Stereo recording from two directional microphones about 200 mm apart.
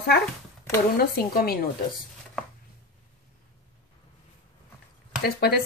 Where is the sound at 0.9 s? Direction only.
50° left (ahead or behind).